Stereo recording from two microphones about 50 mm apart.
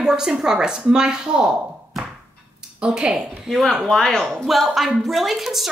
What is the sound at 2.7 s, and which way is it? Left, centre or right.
Speech, centre.